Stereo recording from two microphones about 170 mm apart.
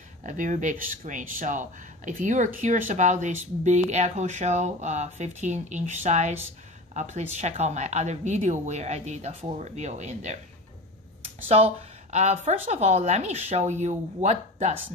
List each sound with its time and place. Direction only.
0.2 s speech: 50° right (ahead or behind)
11.4 s speech: 35° right (ahead or behind)